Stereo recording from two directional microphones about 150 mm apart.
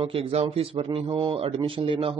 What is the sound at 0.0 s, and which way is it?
A man's voice, 40° right (ahead or behind).